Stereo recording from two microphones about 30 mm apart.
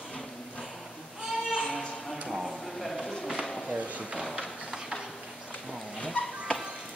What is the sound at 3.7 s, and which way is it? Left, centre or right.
Drawer open or close, right.